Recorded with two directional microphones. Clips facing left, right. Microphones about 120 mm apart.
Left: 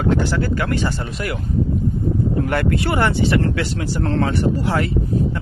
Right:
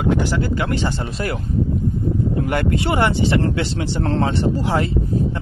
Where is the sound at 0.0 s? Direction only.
15° right (ahead or behind).